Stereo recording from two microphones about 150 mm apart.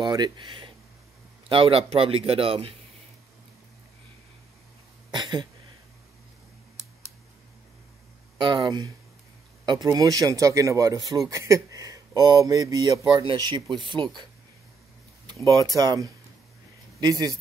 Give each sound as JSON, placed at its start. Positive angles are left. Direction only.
{"t": 0.0, "sound": "a man's voice", "side_deg": -30}
{"t": 5.1, "sound": "a sound", "side_deg": -30}
{"t": 8.6, "sound": "speech", "side_deg": -25}
{"t": 15.2, "sound": "speech", "side_deg": -25}